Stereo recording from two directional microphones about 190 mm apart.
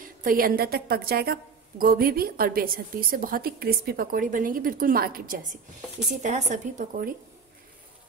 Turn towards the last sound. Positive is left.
turn(degrees=-45)  # may be behind; listen again after turning